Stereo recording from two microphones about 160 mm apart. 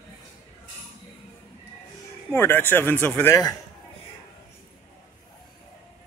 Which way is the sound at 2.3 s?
15° left (ahead or behind).